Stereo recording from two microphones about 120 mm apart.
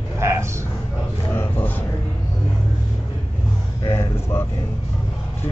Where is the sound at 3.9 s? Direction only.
20° left (ahead or behind).